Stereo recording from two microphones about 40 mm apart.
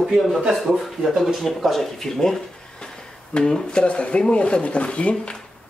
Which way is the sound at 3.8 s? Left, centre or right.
Left.